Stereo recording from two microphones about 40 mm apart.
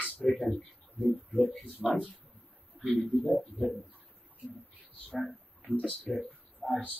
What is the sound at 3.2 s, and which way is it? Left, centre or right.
Speech, left.